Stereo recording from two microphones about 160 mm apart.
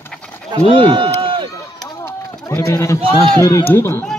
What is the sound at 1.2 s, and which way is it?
Run, 30° right (ahead or behind).